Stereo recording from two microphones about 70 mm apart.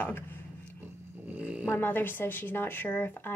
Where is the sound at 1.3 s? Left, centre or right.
Centre.